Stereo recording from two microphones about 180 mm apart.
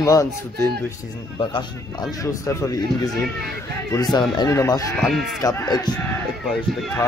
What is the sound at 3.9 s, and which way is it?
Speech, 20° left (ahead or behind).